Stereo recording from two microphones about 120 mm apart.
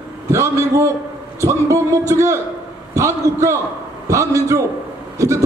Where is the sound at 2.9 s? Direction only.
25° right (ahead or behind).